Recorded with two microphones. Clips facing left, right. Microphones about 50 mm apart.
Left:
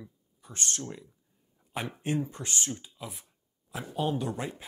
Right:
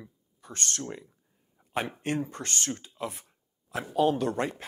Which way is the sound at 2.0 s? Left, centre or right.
Right.